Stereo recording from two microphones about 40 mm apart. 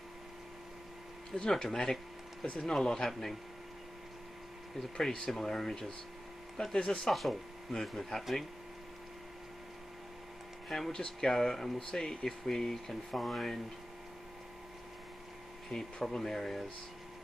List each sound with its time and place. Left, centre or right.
1.3 s speech: centre
4.9 s speech: centre
7.1 s speech: centre
10.9 s speech: left
11.2 s speech: centre
11.9 s speech: centre
15.7 s speech: centre